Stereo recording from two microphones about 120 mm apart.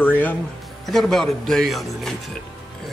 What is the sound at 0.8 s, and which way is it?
Speech, centre (ahead or behind).